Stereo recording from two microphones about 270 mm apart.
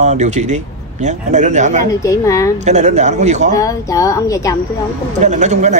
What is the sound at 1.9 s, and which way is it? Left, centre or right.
Speech, centre.